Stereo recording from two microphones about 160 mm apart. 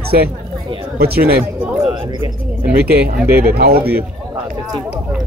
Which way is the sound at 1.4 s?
10° right (ahead or behind).